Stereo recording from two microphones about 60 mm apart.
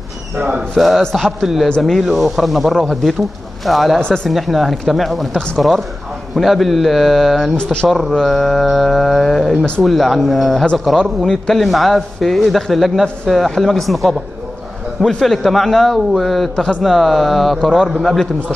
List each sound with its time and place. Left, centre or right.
0.4 s speech: centre
0.7 s speech: centre
4.0 s speech: centre
4.3 s speech: centre
7.5 s speech: centre